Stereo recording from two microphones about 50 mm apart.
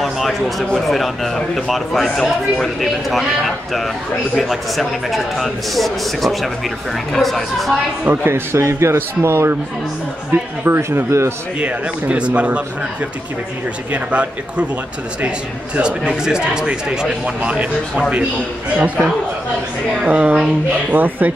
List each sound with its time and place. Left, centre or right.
0.0 s a man's voice: centre
8.0 s speech: right
8.3 s speech: right
8.9 s speech: right
10.8 s a man's voice: right
11.6 s a man's voice: right
13.9 s a man's voice: right
20.1 s speech: right